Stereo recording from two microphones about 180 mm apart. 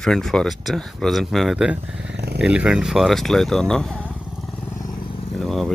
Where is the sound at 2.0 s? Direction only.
65° right (ahead or behind).